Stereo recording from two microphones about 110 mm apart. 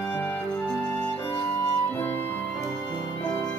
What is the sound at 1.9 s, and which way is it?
Music, 20° left (ahead or behind).